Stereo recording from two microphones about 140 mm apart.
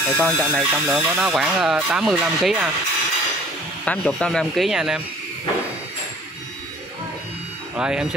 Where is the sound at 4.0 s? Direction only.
5° left (ahead or behind).